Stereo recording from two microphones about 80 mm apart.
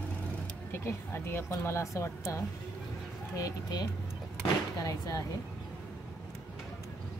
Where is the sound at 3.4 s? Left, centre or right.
Left.